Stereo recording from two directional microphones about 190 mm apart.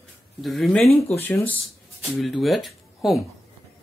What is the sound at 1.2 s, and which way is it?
Speech, 10° left (ahead or behind).